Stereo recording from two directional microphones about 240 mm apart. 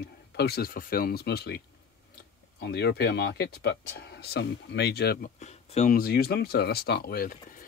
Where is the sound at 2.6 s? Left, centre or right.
Left.